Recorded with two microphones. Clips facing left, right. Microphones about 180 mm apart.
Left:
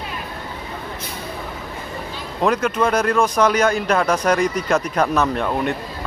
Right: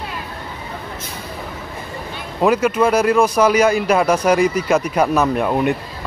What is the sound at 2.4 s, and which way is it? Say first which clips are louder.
Speech: right 3 dB; 5° right (ahead or behind).